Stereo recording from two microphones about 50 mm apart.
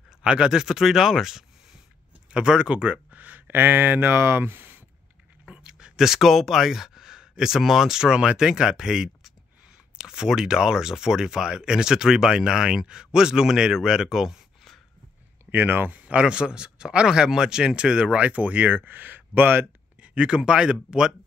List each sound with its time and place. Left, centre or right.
0.2 s speech: centre
2.3 s speech: centre; by 4.7 s right
5.4 s speech: centre
15.5 s speech: right
15.9 s speech: right
20.0 s speech: right